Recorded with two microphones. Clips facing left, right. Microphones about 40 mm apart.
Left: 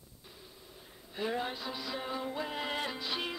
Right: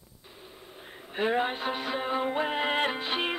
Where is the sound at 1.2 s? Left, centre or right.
Right.